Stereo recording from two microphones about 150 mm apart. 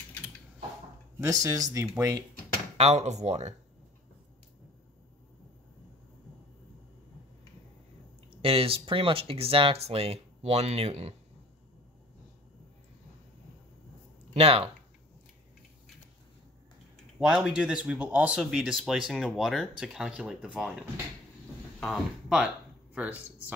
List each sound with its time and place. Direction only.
1.2 s speech: 20° right (ahead or behind)
2.8 s speech: 50° right (ahead or behind)
8.3 s speech: 40° right (ahead or behind)
14.3 s speech: 40° right (ahead or behind)
17.2 s speech: 5° right (ahead or behind)
21.7 s speech: centre (ahead or behind)